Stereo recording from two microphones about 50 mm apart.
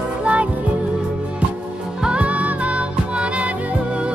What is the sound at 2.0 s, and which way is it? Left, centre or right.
Music, right.